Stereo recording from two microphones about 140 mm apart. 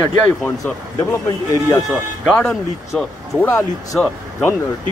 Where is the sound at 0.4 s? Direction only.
15° left (ahead or behind).